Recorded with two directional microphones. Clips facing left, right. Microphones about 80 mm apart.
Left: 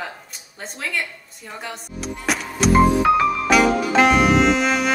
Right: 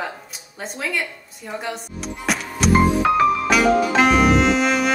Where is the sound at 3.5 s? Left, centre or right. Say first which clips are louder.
Even; centre.